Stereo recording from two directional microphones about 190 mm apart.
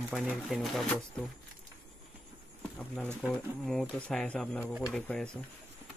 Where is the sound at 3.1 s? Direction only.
Centre (ahead or behind).